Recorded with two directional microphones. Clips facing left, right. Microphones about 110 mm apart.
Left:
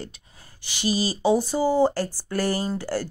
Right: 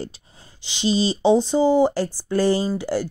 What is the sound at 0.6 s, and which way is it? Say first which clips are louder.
Speech: right 4 dB; 20° right (ahead or behind).